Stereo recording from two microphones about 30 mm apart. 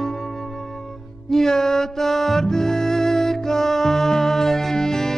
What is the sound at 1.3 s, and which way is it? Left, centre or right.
Music, centre.